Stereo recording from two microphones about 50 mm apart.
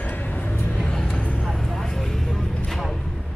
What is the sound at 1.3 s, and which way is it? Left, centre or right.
Vehicle, centre.